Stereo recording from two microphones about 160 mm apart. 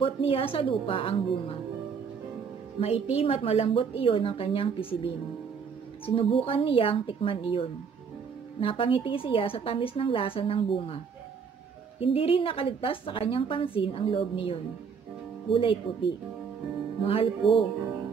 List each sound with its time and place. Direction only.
0.0 s a woman's voice: 35° left (ahead or behind)
2.8 s a woman's voice: 40° left (ahead or behind)
12.0 s a woman's voice: 35° left (ahead or behind)
17.0 s a woman's voice: 35° left (ahead or behind)